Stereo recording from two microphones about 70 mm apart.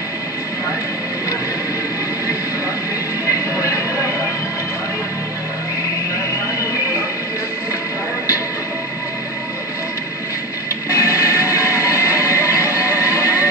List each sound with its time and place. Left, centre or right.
10.9 s music: left